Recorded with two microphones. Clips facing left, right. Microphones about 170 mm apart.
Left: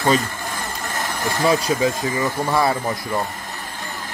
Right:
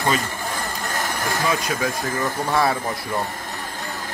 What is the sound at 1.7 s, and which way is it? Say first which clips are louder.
Speech: left 5 dB; 20° left (ahead or behind).